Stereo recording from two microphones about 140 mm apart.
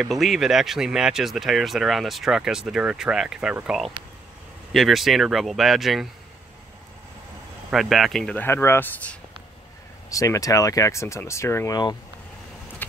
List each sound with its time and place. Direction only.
0.0 s speech: centre (ahead or behind)
7.7 s speech: centre (ahead or behind)
8.5 s speech: 15° left (ahead or behind)
10.0 s speech: 25° left (ahead or behind)